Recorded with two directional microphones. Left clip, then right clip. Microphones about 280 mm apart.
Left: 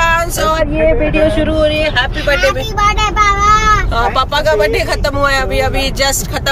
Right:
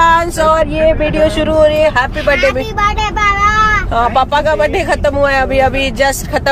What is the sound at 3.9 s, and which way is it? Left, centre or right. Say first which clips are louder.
Speech: right 2 dB; centre.